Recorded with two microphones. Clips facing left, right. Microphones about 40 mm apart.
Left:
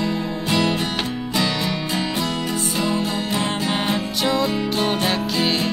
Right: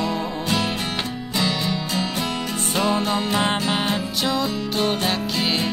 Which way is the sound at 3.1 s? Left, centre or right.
Right.